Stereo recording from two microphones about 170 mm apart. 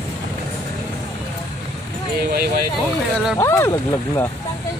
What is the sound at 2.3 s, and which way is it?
Speech, 65° right (ahead or behind).